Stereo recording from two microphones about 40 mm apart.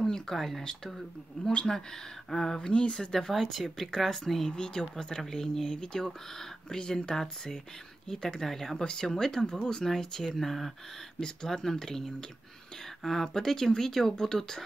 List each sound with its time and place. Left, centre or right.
0.0 s speech: centre
2.2 s speech: centre
2.6 s speech: left
4.5 s speech: left